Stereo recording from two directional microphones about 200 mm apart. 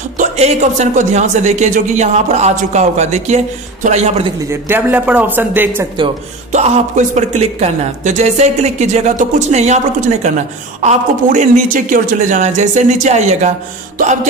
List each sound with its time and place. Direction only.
0.2 s speech: 35° right (ahead or behind)
4.5 s a man's voice: 10° right (ahead or behind)
6.5 s speech: 35° right (ahead or behind)